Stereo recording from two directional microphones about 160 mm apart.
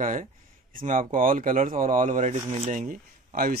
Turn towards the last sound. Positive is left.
turn(degrees=-65)  # may be behind; listen again after turning